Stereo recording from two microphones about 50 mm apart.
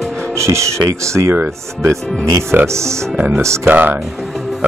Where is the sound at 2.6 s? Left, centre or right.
Right.